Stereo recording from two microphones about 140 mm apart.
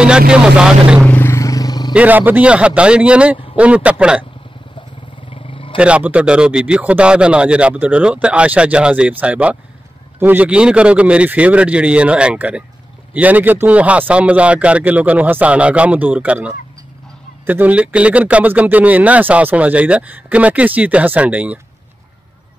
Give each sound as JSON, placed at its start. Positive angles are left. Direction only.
{"t": 0.3, "sound": "speech", "side_deg": -5}
{"t": 1.0, "sound": "a sound", "side_deg": 15}
{"t": 2.0, "sound": "speech", "side_deg": -10}
{"t": 5.3, "sound": "roaring cats", "side_deg": 40}
{"t": 5.8, "sound": "speech", "side_deg": -10}